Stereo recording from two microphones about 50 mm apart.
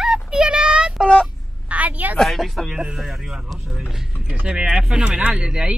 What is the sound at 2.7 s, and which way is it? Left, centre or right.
A child's voice, centre.